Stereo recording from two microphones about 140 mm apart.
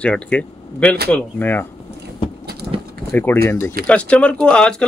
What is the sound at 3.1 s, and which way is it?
Speech, 15° left (ahead or behind).